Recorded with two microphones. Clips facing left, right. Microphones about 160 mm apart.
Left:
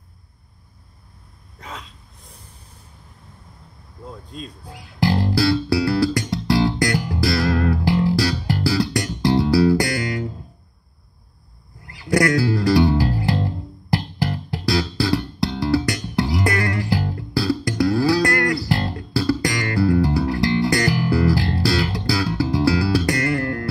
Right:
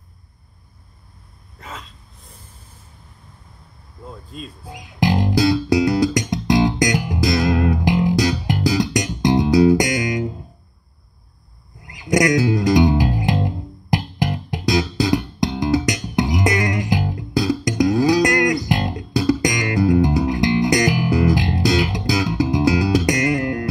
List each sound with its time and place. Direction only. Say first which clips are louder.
1.6 s a sound: even; centre (ahead or behind)
4.3 s speech: even; 5° right (ahead or behind)
4.6 s music: right 1 dB; 20° right (ahead or behind)
11.8 s music: right 1 dB; 20° right (ahead or behind)